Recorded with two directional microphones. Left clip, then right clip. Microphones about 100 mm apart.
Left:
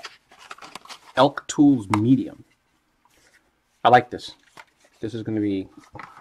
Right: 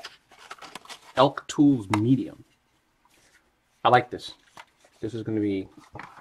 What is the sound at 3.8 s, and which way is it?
Speech, 60° left (ahead or behind).